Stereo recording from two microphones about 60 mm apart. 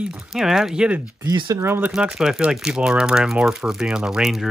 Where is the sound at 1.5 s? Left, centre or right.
Right.